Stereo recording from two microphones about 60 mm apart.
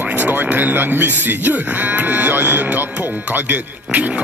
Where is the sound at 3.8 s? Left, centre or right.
Right.